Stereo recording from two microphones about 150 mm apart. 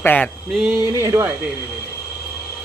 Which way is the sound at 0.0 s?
10° left (ahead or behind).